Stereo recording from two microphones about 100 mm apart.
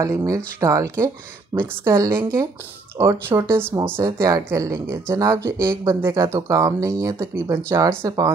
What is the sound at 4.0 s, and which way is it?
A woman's voice, 35° right (ahead or behind).